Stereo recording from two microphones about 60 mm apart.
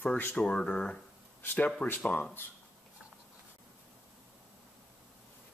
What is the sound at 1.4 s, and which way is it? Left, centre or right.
Speech, left.